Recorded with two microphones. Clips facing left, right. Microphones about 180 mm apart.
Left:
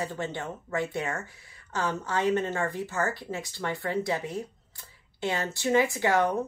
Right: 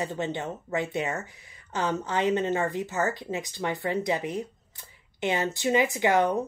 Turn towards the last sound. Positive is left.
turn(degrees=-20)  # may be behind; listen again after turning